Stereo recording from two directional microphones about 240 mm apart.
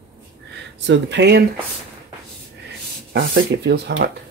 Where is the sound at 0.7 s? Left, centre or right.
Right.